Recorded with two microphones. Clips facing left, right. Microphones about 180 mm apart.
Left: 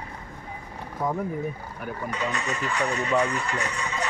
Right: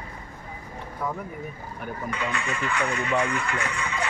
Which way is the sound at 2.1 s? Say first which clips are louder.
Left 1 dB; 40° left (ahead or behind).